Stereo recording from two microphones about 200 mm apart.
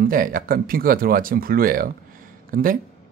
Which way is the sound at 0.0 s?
45° right (ahead or behind).